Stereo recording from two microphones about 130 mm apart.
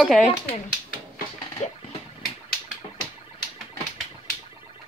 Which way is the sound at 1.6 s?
60° left (ahead or behind).